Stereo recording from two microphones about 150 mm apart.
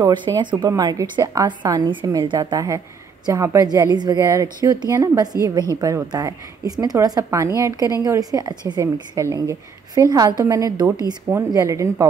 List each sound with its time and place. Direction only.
0.0 s a woman's voice: 30° right (ahead or behind)
2.3 s a woman's voice: 20° right (ahead or behind)